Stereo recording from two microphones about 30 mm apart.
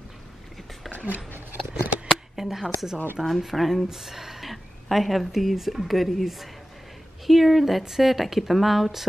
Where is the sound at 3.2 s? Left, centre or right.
Centre.